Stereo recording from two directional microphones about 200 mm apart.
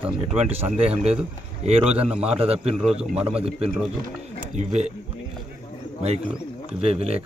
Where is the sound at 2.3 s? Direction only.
30° right (ahead or behind).